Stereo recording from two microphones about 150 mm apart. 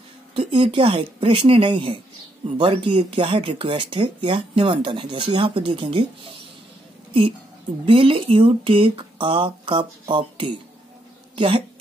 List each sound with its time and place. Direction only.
0.3 s speech: 35° right (ahead or behind)
7.8 s a woman's voice: 35° right (ahead or behind)